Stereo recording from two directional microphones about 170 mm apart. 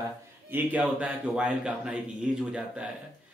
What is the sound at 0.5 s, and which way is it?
Speech, 10° right (ahead or behind).